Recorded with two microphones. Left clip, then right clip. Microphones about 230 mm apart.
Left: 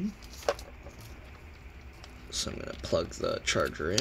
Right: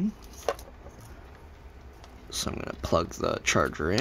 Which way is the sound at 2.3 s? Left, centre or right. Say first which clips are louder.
Right 3 dB; right.